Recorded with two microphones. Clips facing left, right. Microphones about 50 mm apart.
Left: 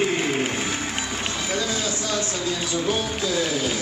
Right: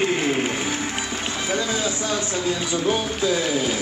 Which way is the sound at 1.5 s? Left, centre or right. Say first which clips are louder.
Right 3 dB; right.